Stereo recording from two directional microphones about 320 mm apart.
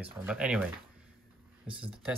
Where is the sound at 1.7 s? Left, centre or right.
Centre.